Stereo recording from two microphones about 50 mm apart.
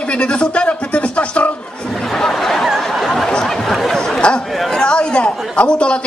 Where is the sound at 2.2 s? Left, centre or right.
Centre.